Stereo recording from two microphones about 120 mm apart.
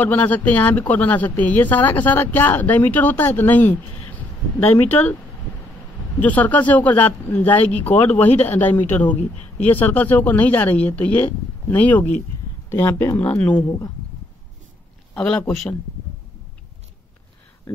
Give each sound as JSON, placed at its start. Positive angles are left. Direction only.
{"t": 0.0, "sound": "speech", "side_deg": 15}
{"t": 6.1, "sound": "speech", "side_deg": 15}
{"t": 8.3, "sound": "a man's voice", "side_deg": 65}
{"t": 8.8, "sound": "speech", "side_deg": 15}
{"t": 15.1, "sound": "speech", "side_deg": 10}